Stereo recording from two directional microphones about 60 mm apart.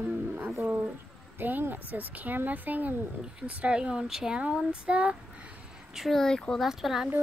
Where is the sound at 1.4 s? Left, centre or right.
Right.